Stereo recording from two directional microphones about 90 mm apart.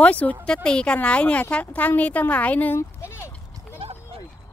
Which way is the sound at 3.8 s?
90° right.